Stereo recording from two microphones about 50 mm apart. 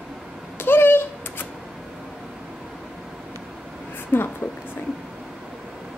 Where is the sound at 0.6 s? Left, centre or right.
Left.